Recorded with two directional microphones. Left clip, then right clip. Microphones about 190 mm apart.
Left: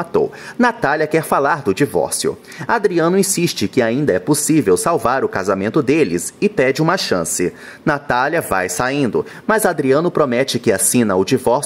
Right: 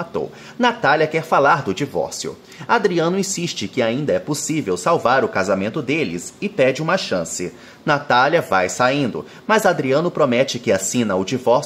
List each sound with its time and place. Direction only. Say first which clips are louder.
0.1 s speech: left 8 dB; 40° left (ahead or behind)